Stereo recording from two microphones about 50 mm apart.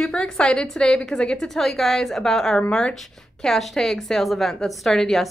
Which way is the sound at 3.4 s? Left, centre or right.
Centre.